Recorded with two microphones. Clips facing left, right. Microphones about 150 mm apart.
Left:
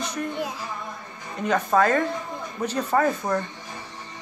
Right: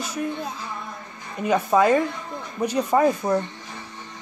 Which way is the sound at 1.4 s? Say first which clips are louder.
Right 2 dB; 10° right (ahead or behind).